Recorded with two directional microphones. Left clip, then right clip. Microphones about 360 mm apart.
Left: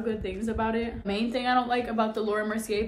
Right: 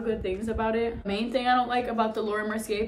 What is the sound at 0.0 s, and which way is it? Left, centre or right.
Speech, centre.